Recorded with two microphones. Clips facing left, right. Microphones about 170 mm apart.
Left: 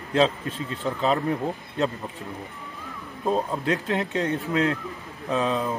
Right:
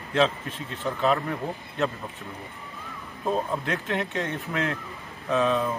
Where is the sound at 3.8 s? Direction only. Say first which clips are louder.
Left 3 dB; 35° left (ahead or behind).